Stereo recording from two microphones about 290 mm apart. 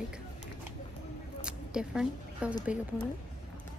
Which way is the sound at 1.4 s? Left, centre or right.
Centre.